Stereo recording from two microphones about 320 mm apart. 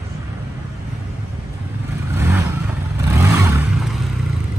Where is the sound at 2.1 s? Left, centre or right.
Centre.